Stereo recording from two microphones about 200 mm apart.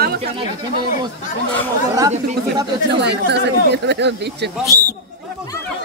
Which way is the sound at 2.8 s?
55° right (ahead or behind).